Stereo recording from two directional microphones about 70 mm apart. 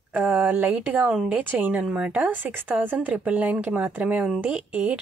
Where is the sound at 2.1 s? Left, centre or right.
Right.